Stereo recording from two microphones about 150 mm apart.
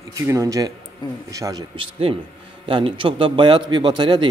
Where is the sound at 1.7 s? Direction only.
35° right (ahead or behind).